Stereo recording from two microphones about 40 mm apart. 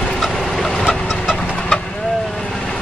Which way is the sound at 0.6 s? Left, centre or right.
Centre.